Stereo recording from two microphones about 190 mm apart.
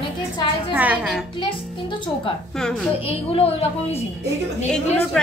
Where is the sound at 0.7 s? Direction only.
10° right (ahead or behind).